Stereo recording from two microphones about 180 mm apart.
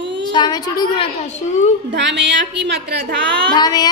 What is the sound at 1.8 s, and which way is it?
A woman's voice, 75° right (ahead or behind).